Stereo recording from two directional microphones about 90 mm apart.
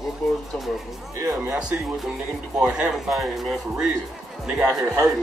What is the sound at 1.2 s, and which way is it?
Speech, 40° right (ahead or behind).